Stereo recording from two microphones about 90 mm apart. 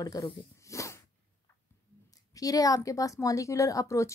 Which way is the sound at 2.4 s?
40° left (ahead or behind).